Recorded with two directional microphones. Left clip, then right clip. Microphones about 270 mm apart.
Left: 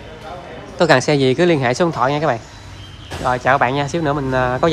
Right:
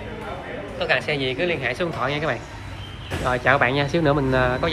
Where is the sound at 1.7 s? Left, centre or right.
Centre.